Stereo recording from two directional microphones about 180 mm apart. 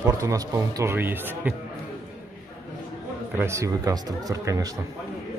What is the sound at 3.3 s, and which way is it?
A man's voice, 15° right (ahead or behind).